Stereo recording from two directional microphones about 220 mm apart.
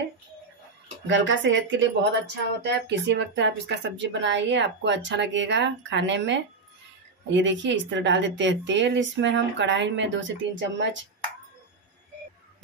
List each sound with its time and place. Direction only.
1.0 s speech: 55° right (ahead or behind)